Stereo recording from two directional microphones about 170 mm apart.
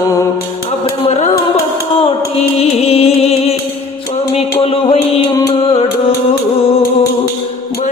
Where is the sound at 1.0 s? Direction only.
40° left (ahead or behind).